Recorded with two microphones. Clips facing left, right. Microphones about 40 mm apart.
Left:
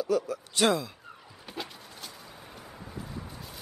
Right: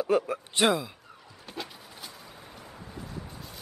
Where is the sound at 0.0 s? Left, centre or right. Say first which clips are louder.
Right 2 dB; right.